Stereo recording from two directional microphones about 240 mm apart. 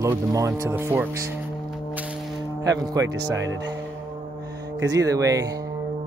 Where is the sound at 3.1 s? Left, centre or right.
Right.